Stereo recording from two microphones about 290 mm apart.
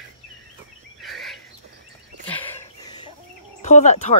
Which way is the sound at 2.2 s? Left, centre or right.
Centre.